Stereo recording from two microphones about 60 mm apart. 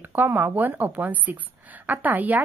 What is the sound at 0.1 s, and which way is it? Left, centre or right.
A woman's voice, right.